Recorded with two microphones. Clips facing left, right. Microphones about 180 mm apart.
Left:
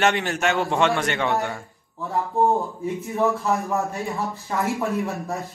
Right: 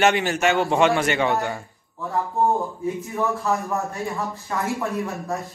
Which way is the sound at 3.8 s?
Centre (ahead or behind).